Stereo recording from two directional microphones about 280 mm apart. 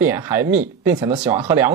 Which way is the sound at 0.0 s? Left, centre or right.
Centre.